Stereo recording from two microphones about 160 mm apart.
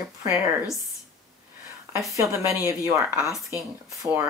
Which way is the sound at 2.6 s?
20° right (ahead or behind).